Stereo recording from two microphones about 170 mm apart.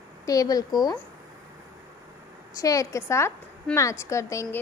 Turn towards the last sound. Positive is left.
turn(degrees=15)  # may be behind; listen again after turning